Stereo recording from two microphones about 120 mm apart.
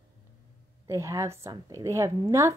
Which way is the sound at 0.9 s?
25° right (ahead or behind).